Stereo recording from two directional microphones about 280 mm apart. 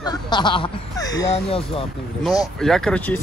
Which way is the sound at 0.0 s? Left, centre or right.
Centre.